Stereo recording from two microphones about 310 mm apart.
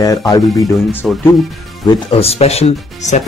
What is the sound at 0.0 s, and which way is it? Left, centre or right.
Speech, centre.